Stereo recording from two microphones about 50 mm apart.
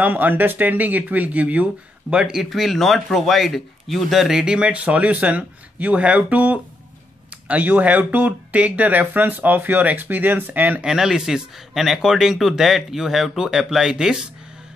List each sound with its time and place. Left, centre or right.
0.0 s speech: right
2.3 s a man's voice: centre; by 10.8 s right
10.8 s a man's voice: centre